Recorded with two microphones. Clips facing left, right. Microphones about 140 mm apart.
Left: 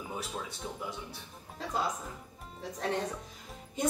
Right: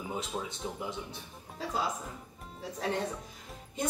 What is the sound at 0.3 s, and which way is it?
Speech, 20° right (ahead or behind).